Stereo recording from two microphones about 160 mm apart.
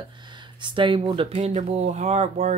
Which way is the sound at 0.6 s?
30° right (ahead or behind).